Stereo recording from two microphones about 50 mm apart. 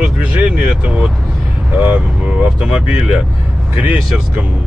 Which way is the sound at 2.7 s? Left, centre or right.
Centre.